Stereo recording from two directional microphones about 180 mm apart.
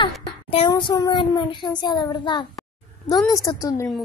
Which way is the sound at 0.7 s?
25° left (ahead or behind).